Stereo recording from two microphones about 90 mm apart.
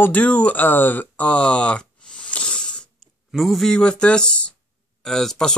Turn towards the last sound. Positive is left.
turn(degrees=5)  # may be behind; listen again after turning